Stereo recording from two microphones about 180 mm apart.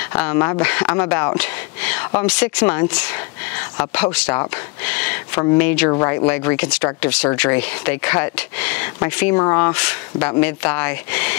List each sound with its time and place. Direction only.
0.1 s speech: 10° left (ahead or behind)
4.8 s a sound: 10° left (ahead or behind)
5.6 s speech: 10° left (ahead or behind)
9.7 s speech: 5° left (ahead or behind)